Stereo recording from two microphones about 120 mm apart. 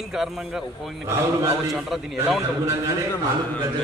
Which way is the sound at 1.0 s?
20° right (ahead or behind).